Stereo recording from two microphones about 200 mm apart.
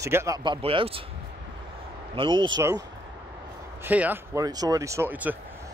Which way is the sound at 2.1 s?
25° right (ahead or behind).